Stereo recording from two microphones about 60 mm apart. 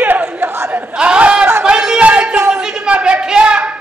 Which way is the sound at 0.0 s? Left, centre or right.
Right.